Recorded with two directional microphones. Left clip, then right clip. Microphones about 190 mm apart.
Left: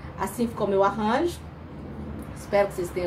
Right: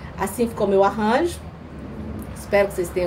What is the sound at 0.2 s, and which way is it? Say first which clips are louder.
A woman's voice: right 5 dB; 15° right (ahead or behind).